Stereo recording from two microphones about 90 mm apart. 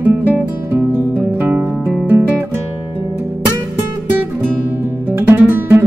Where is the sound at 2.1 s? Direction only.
25° right (ahead or behind).